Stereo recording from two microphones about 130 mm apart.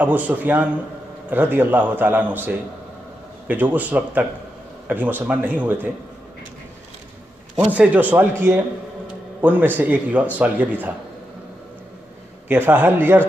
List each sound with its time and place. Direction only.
0.0 s a man's voice: 15° right (ahead or behind)
7.7 s a man's voice: 10° right (ahead or behind)
12.4 s a man's voice: 15° right (ahead or behind)